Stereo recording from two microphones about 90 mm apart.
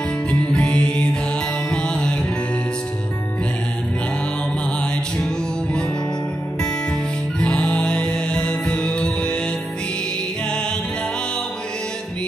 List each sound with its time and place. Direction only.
0.3 s music: 10° left (ahead or behind)
7.3 s music: 10° left (ahead or behind)